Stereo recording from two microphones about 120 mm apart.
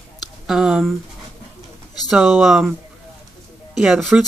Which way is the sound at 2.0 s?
Centre (ahead or behind).